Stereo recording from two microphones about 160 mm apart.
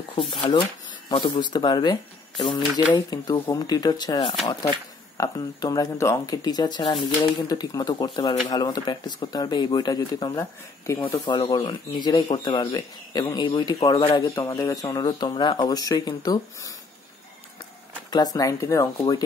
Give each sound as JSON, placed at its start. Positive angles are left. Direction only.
{"t": 0.3, "sound": "speech", "side_deg": 30}
{"t": 18.1, "sound": "speech", "side_deg": 25}